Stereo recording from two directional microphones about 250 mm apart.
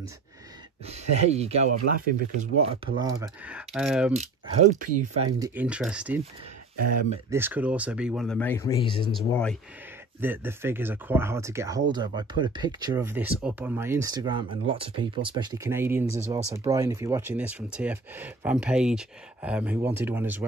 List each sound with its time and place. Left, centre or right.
0.8 s speech: right; by 4.1 s centre
4.7 s speech: right
5.4 s speech: centre
7.2 s speech: centre
9.1 s speech: centre
10.2 s speech: centre